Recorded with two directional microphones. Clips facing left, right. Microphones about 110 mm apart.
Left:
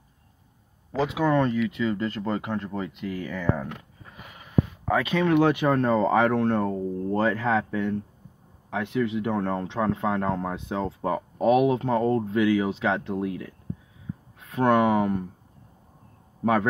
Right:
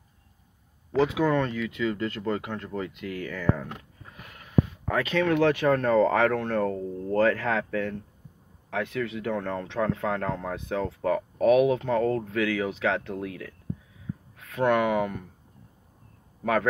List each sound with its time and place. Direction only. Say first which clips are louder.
1.0 s speech: left 3 dB; 25° left (ahead or behind)
4.8 s speech: left 2 dB; 15° left (ahead or behind)
14.6 s speech: left 3 dB; 30° left (ahead or behind)